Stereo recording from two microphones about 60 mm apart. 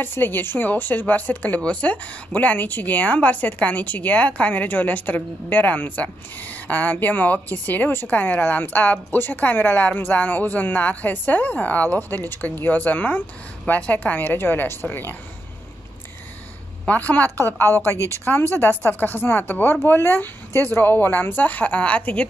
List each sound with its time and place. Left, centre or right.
0.0 s a woman's voice: left
16.8 s a woman's voice: left
17.9 s speech: right
18.2 s a woman's voice: left
19.7 s a woman's voice: left; by 22.3 s centre